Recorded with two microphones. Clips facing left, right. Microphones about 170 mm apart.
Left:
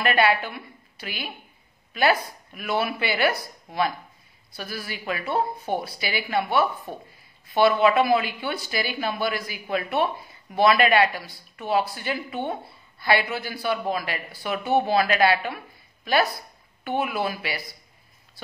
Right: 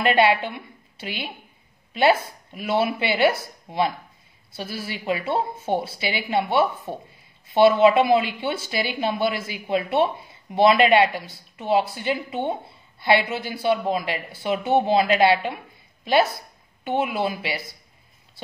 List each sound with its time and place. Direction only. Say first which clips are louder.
0.0 s a woman's voice: right 3 dB; 25° right (ahead or behind)